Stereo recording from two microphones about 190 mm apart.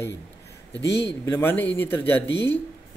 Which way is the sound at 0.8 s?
65° left (ahead or behind).